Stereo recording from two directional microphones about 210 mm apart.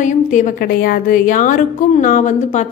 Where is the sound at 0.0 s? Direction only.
35° left (ahead or behind).